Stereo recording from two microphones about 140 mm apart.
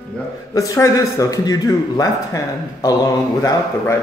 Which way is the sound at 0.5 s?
20° left (ahead or behind).